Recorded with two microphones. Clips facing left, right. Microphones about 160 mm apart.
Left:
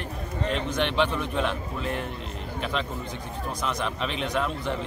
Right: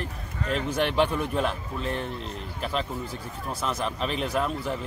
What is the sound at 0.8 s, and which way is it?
Speech, 45° right (ahead or behind).